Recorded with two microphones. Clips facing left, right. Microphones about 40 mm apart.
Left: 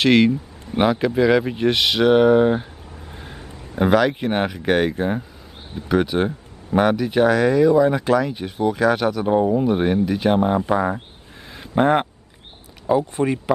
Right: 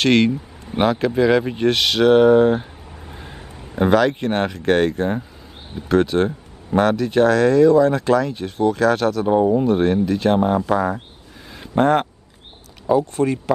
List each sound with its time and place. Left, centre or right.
0.0 s speech: centre
9.7 s speech: centre